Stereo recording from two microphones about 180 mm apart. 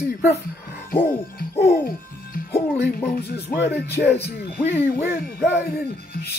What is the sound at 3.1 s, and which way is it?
Music, 65° left (ahead or behind).